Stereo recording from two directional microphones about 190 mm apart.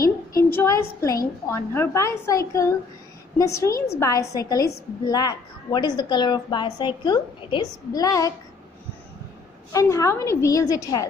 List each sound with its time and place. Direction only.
0.0 s a woman's voice: 15° left (ahead or behind)
9.7 s a woman's voice: 15° left (ahead or behind)